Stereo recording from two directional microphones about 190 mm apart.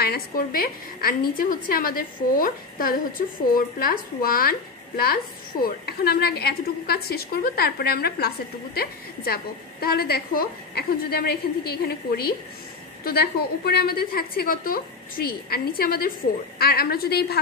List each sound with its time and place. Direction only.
0.0 s a woman's voice: 55° left (ahead or behind)